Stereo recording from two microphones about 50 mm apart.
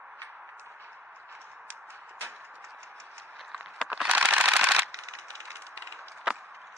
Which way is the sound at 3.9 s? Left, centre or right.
Right.